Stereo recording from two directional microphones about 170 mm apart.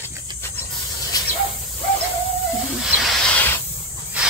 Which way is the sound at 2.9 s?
Centre (ahead or behind).